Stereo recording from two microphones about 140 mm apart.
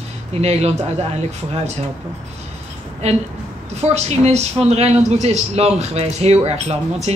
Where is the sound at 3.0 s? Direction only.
50° right (ahead or behind).